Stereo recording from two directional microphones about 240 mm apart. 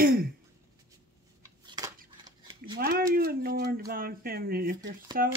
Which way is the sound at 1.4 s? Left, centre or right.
Centre.